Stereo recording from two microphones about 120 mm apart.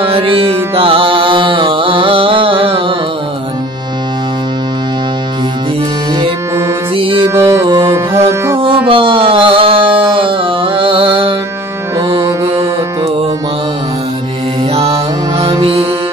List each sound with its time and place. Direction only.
0.0 s music: 50° right (ahead or behind)
7.0 s music: 50° right (ahead or behind)
7.2 s music: 20° right (ahead or behind)
8.5 s a sound: 45° right (ahead or behind)
12.2 s music: 25° right (ahead or behind)
14.7 s music: 55° right (ahead or behind)